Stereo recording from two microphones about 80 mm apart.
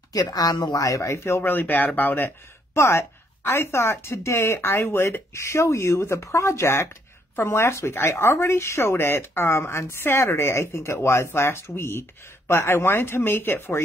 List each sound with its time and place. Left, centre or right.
0.1 s speech: left
0.7 s speech: left